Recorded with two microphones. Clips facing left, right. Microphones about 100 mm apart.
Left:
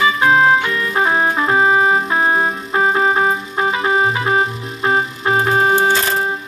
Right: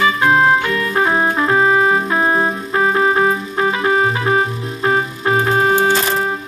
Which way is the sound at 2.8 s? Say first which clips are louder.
Right 1 dB; 15° left (ahead or behind).